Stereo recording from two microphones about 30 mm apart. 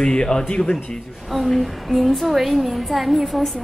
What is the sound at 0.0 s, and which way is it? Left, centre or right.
Speech, left.